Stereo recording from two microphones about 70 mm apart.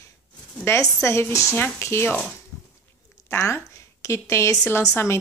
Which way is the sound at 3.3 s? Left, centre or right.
Left.